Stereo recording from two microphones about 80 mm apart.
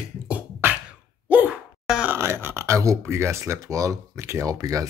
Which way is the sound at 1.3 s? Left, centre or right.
Right.